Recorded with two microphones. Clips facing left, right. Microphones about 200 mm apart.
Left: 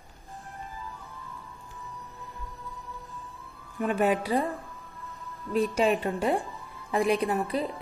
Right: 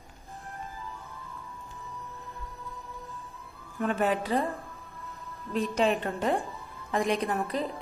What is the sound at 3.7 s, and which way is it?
A woman's voice, 15° left (ahead or behind).